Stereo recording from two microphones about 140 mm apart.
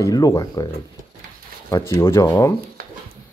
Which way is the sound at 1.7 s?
20° left (ahead or behind).